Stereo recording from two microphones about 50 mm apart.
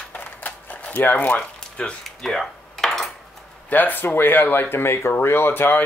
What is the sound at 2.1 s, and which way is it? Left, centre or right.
Cutlery, centre.